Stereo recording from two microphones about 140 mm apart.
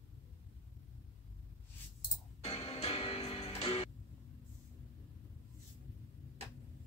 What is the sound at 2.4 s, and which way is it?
Music, 45° left (ahead or behind).